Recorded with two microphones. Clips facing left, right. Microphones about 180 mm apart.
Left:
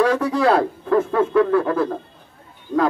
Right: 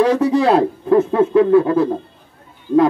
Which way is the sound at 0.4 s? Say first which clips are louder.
Right 3 dB; 25° right (ahead or behind).